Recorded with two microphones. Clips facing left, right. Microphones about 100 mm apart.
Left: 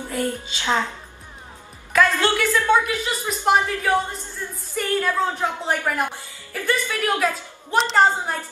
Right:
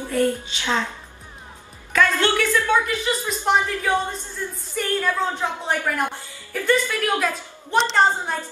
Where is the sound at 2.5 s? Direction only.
20° left (ahead or behind).